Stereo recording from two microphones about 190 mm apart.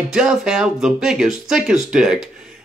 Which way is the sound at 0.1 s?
5° right (ahead or behind).